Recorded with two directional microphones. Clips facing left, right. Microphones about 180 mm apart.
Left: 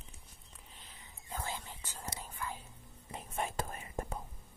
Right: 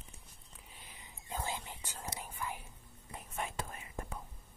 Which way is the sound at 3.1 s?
25° left (ahead or behind).